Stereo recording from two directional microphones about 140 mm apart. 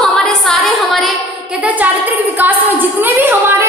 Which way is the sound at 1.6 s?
10° right (ahead or behind).